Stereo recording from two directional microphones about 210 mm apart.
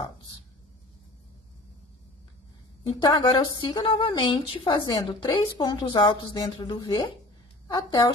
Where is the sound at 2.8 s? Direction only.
20° left (ahead or behind).